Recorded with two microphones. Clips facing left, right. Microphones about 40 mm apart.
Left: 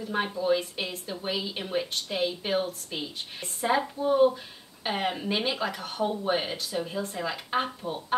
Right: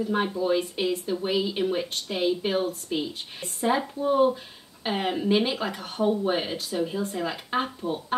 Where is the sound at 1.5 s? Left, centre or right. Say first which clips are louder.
Right 4 dB; centre.